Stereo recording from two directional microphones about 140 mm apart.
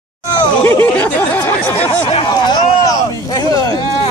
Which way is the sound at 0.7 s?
15° left (ahead or behind).